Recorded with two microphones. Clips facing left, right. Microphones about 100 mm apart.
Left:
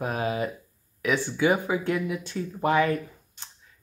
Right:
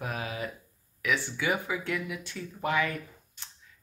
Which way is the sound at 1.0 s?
30° left (ahead or behind).